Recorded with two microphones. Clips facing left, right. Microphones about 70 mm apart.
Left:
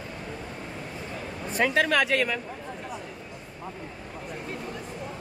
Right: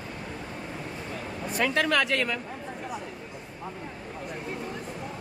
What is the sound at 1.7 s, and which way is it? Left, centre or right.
Speech, centre.